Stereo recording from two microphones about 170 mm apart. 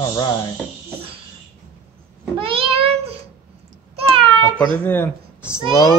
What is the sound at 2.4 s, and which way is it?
Child singing, 30° right (ahead or behind).